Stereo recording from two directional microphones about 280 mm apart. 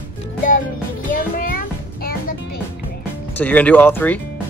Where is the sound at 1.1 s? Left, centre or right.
Left.